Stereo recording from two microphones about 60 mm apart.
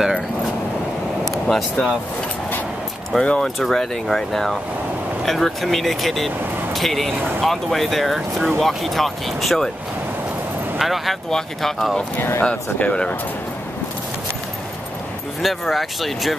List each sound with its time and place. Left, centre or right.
1.3 s speech: centre
3.2 s speech: centre
3.4 s speech: centre
10.8 s speech: centre
12.2 s speech: left
12.4 s speech: centre
15.4 s speech: centre